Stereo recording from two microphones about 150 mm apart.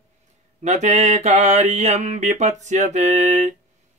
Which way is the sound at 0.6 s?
50° right (ahead or behind).